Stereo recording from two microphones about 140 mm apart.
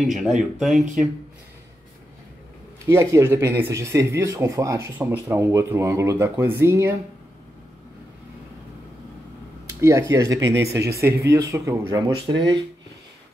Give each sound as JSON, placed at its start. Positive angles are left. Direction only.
{"t": 0.0, "sound": "speech", "side_deg": -5}
{"t": 2.9, "sound": "speech", "side_deg": -20}
{"t": 9.7, "sound": "speech", "side_deg": -20}